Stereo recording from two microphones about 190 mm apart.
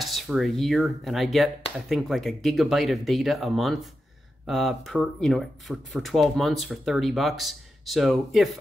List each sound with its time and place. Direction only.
0.0 s speech: centre (ahead or behind)